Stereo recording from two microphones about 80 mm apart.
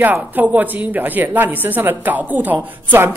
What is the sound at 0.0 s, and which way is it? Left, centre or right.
A woman's voice, right.